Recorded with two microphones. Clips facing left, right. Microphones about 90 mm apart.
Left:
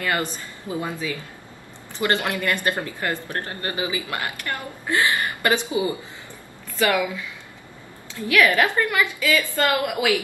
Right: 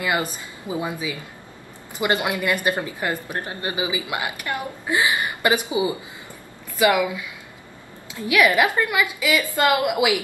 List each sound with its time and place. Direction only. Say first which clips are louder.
0.0 s a woman's voice: right 1 dB; 15° right (ahead or behind)